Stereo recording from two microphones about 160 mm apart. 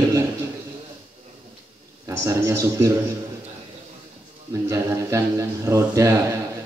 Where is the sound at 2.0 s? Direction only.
20° right (ahead or behind).